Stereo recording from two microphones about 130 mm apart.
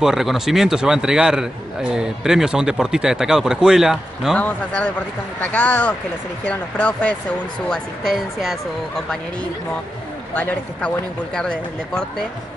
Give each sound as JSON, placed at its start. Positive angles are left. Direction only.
{"t": 0.0, "sound": "a man's voice", "side_deg": -5}
{"t": 4.4, "sound": "a man's voice", "side_deg": 10}
{"t": 10.3, "sound": "a man's voice", "side_deg": 15}